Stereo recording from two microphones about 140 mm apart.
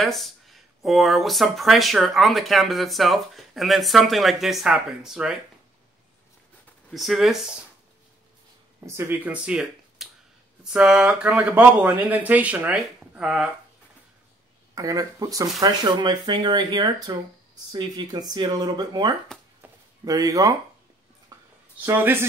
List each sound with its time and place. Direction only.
0.0 s speech: centre (ahead or behind)
6.9 s speech: centre (ahead or behind)
8.8 s speech: 20° right (ahead or behind)
14.8 s speech: 25° right (ahead or behind)
21.3 s a sound: 25° right (ahead or behind)
21.8 s speech: 15° right (ahead or behind)